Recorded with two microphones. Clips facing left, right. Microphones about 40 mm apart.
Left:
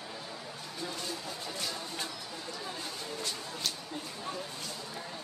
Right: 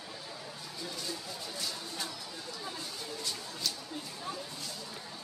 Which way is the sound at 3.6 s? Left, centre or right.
Left.